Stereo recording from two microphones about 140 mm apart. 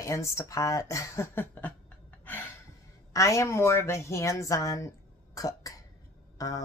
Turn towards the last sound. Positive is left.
turn(degrees=25)  # may be behind; listen again after turning